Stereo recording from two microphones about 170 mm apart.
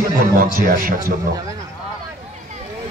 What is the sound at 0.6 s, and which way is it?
Speech, 55° right (ahead or behind).